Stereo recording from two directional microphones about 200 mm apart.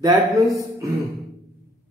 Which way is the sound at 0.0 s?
15° right (ahead or behind).